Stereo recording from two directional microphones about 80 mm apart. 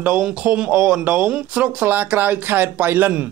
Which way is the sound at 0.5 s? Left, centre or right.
Centre.